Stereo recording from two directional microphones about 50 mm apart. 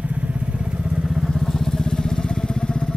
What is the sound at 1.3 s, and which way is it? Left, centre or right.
Motorcycle, centre.